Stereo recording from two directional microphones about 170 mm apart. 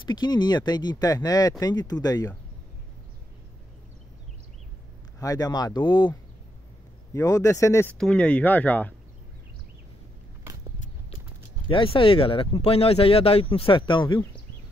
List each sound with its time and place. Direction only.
0.0 s speech: 25° left (ahead or behind)
5.2 s speech: 20° left (ahead or behind)
7.2 s speech: 20° left (ahead or behind)
8.0 s speech: 5° left (ahead or behind)
11.7 s speech: 30° left (ahead or behind)